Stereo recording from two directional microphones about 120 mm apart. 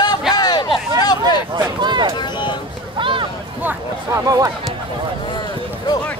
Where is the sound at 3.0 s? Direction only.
45° right (ahead or behind).